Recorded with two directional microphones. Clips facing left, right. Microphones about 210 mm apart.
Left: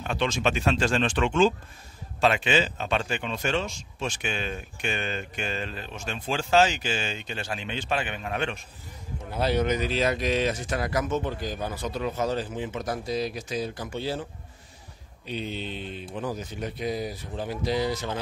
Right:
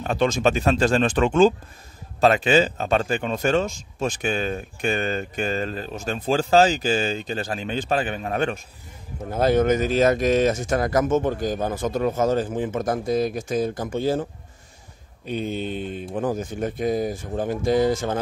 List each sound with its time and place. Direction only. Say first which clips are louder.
0.0 s speech: right 6 dB; 40° right (ahead or behind)
15.2 s speech: right 6 dB; 50° right (ahead or behind)